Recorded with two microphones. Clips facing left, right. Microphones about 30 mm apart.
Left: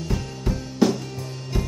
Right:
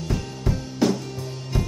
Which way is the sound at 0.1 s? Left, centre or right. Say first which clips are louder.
Right 1 dB; centre.